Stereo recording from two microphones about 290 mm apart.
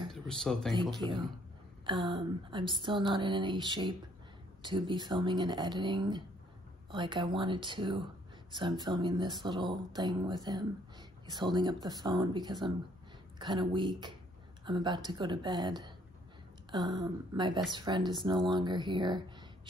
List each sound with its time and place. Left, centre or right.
0.1 s speech: centre
0.9 s speech: centre